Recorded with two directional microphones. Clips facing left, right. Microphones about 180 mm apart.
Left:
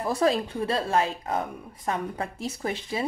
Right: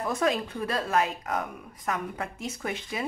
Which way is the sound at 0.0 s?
30° left (ahead or behind).